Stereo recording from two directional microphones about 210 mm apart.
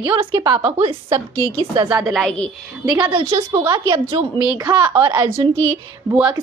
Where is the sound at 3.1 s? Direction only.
25° right (ahead or behind).